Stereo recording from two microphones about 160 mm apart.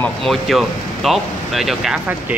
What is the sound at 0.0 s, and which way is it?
Speech, centre (ahead or behind).